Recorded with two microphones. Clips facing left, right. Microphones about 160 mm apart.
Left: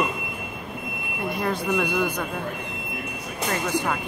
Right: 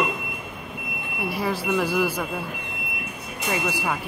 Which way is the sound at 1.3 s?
5° right (ahead or behind).